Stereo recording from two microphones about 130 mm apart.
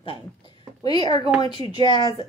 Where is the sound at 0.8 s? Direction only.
35° left (ahead or behind).